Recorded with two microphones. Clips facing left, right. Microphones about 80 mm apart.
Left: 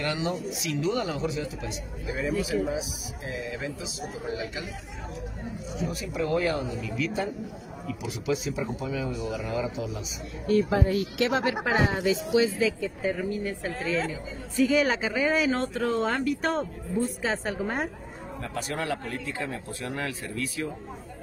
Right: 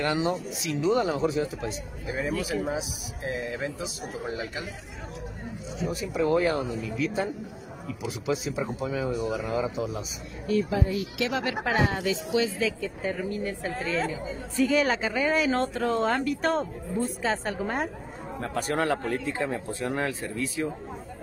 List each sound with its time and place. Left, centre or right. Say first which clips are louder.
0.0 s speech: right 3 dB; right
0.8 s speech: right 5 dB; centre
1.1 s a man's voice: right 4 dB; right
6.1 s speech: right 3 dB; right
6.5 s speech: right 1 dB; right
10.4 s speech: left 2 dB; left
12.0 s a woman's voice: left 3 dB; left
12.5 s speech: left 2 dB; centre
18.4 s speech: right 5 dB; right